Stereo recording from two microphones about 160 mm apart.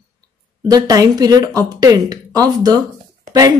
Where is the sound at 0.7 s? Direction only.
25° right (ahead or behind).